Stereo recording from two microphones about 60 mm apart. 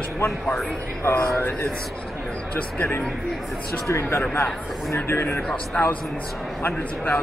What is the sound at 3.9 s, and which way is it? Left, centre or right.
Speech, left.